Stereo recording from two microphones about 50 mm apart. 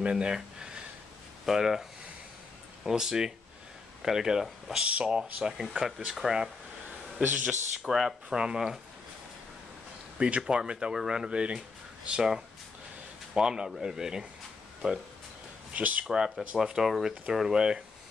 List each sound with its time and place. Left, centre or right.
0.0 s speech: centre
7.2 s speech: right
7.9 s speech: centre
10.1 s speech: centre
15.7 s speech: right
16.6 s speech: centre